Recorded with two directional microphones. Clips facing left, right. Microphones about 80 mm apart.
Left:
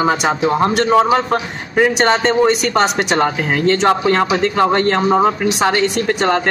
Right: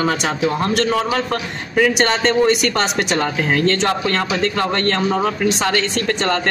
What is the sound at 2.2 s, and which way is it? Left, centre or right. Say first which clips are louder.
Speech: left 1 dB; centre.